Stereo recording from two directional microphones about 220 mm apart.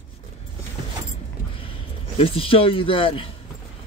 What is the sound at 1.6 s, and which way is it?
Speech, 25° left (ahead or behind).